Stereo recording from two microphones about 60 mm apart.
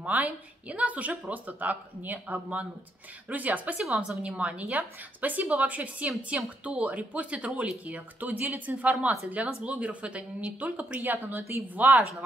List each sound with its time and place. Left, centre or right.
0.0 s a woman's voice: right
3.8 s a woman's voice: centre
4.2 s a woman's voice: centre
11.1 s a woman's voice: right